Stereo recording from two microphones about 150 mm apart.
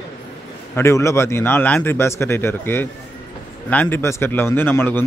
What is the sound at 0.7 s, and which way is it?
A man's voice, 20° left (ahead or behind).